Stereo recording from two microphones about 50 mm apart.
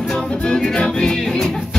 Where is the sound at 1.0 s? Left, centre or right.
Centre.